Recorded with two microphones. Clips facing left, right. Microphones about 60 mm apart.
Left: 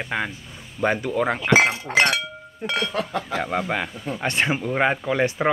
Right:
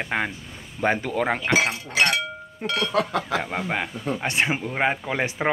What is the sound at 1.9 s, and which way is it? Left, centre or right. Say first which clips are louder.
Speech: left 2 dB; left.